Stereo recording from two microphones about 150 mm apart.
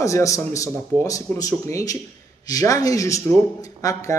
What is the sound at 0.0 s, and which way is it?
Speech, 20° left (ahead or behind).